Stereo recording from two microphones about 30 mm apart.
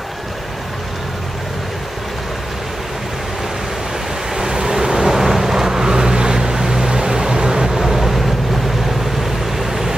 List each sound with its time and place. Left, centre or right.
4.4 s vehicle: right